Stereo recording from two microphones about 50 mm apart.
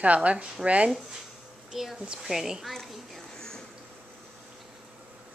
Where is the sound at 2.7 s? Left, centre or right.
Centre.